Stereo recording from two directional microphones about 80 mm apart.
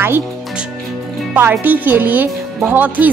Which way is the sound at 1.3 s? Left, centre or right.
Right.